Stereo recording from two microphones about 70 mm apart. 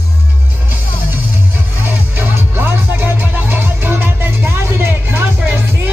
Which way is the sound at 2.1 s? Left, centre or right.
Right.